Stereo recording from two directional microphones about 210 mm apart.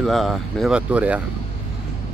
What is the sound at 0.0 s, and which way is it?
Speech, centre (ahead or behind).